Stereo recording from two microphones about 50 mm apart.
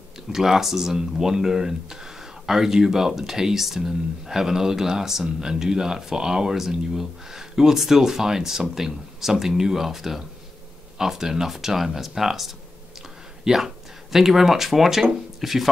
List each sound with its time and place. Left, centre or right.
0.3 s speech: centre
13.4 s a sound: centre
14.1 s speech: centre